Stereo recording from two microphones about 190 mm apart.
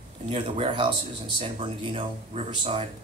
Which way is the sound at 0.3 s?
30° right (ahead or behind).